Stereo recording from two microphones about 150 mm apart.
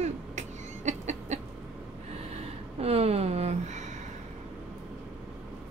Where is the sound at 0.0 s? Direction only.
50° right (ahead or behind).